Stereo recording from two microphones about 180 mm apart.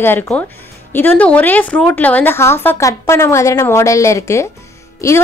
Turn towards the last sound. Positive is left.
turn(degrees=20)  # may be behind; listen again after turning